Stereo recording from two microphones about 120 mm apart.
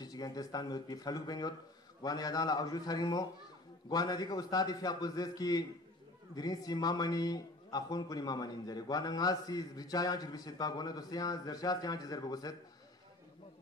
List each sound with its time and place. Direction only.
0.0 s a man's voice: 35° left (ahead or behind)